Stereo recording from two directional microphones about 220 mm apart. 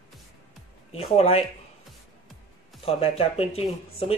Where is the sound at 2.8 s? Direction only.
25° left (ahead or behind).